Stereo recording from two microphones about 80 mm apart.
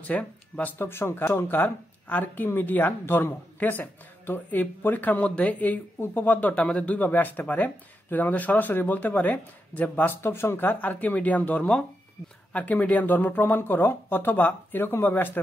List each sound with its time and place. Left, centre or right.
0.0 s speech: centre